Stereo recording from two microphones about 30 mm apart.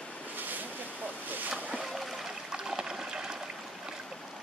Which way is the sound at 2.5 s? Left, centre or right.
Right.